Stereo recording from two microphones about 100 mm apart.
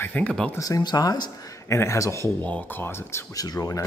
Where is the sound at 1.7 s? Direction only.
30° left (ahead or behind).